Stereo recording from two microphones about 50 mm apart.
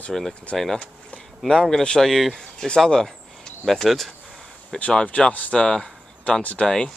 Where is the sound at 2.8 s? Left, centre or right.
Centre.